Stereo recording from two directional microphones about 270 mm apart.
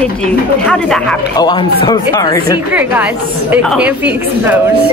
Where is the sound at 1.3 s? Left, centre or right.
Centre.